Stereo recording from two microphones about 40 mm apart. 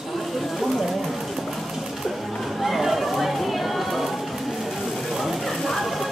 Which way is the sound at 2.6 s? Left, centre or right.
Centre.